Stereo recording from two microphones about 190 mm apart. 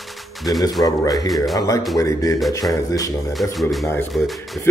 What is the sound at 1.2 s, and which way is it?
Speech, centre (ahead or behind).